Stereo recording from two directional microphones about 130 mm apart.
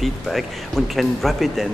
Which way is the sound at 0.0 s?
Centre (ahead or behind).